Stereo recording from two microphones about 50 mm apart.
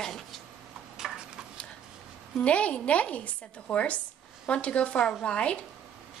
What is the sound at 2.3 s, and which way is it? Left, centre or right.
A woman's voice, left.